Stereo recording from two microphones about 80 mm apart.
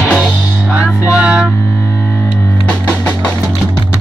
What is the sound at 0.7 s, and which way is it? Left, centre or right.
Music, centre.